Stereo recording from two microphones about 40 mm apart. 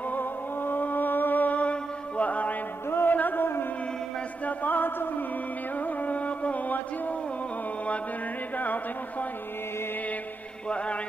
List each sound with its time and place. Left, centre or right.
0.1 s music: left
2.9 s music: left
3.2 s a sound: left
4.5 s music: left